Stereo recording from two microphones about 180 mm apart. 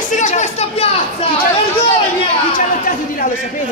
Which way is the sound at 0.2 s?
40° left (ahead or behind).